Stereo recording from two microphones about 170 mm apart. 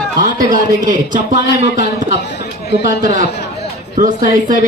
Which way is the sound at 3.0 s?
45° right (ahead or behind).